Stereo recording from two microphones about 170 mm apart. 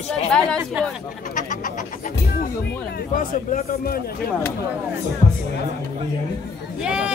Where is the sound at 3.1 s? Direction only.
55° left (ahead or behind).